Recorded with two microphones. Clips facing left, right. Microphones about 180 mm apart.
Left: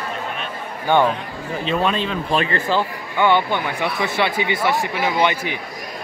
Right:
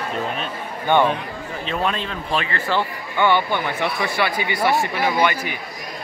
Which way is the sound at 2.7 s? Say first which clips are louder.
Left 2 dB; 15° left (ahead or behind).